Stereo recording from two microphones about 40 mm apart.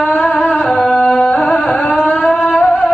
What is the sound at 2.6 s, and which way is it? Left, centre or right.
Music, centre.